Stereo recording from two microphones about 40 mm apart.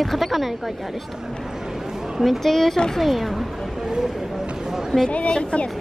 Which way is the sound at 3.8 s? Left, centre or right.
Centre.